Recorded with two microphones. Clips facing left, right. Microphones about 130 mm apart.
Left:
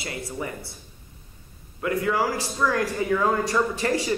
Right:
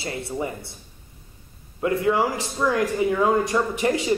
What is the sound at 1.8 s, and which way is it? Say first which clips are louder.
A man's voice: right 3 dB; 25° right (ahead or behind).